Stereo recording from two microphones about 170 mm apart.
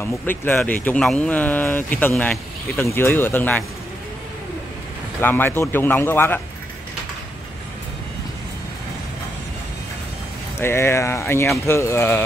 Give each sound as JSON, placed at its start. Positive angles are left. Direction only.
{"t": 0.0, "sound": "speech", "side_deg": 10}
{"t": 5.2, "sound": "speech", "side_deg": 10}
{"t": 10.6, "sound": "speech", "side_deg": 15}